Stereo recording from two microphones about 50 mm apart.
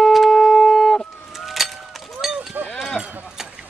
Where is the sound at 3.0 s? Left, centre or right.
Centre.